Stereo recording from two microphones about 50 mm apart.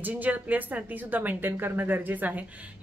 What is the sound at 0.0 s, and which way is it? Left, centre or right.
A woman's voice, right.